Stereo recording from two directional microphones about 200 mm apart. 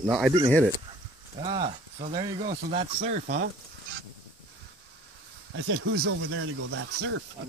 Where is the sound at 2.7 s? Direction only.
35° right (ahead or behind).